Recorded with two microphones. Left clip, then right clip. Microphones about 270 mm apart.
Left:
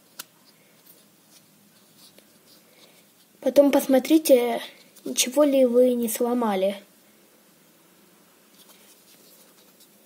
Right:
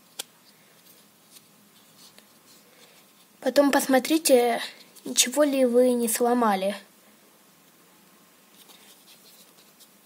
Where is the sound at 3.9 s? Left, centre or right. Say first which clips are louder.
Left 2 dB; right.